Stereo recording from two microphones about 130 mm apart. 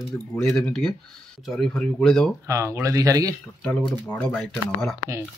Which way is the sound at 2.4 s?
20° right (ahead or behind).